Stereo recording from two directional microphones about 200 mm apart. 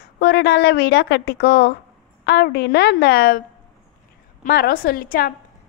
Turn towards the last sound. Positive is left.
turn(degrees=45)  # may be behind; listen again after turning